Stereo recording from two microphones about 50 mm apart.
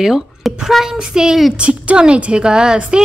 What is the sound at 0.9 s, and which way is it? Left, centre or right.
A woman's voice, centre.